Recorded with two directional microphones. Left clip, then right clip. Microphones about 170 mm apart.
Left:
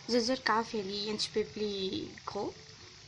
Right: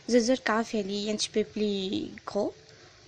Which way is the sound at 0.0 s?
20° right (ahead or behind).